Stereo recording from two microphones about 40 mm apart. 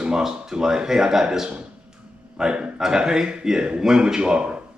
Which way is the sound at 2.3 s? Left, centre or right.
Right.